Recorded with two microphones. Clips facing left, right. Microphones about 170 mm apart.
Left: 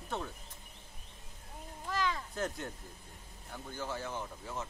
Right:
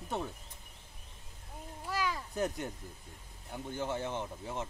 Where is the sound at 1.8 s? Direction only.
10° right (ahead or behind).